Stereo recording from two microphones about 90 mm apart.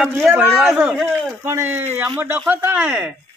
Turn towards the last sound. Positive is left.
turn(degrees=-15)  # may be behind; listen again after turning